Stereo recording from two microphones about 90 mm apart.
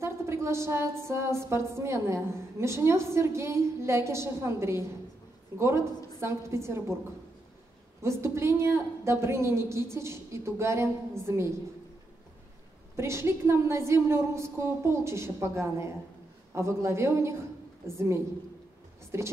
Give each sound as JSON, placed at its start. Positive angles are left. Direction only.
{"t": 0.0, "sound": "a woman's voice", "side_deg": -30}
{"t": 8.0, "sound": "a woman's voice", "side_deg": -30}
{"t": 12.9, "sound": "a woman's voice", "side_deg": -30}